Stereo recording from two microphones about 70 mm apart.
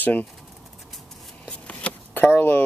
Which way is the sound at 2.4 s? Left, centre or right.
Left.